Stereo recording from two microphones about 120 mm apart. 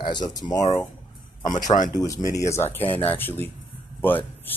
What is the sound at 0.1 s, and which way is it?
Speech, 35° left (ahead or behind).